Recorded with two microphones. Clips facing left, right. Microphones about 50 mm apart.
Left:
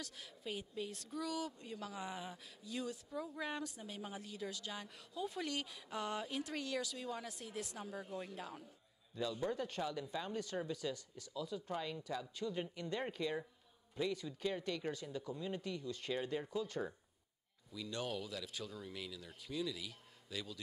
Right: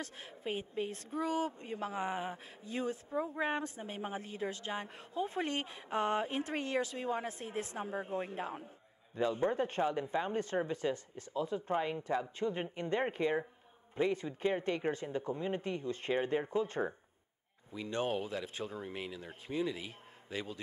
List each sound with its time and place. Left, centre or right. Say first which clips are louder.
0.0 s speech: right 6 dB; right